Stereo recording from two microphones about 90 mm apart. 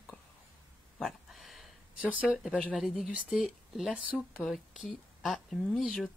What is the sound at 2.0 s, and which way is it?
Speech, 15° right (ahead or behind).